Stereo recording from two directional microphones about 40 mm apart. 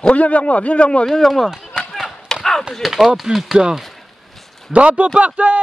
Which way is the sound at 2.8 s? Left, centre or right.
Centre.